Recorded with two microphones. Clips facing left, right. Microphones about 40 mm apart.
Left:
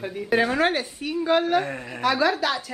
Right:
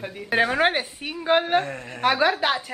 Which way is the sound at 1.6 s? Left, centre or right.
Centre.